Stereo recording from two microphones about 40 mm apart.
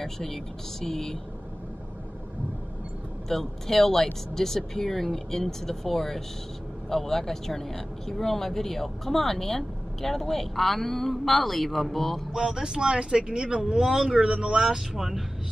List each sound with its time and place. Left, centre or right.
0.0 s speech: centre
3.3 s speech: centre
12.3 s speech: centre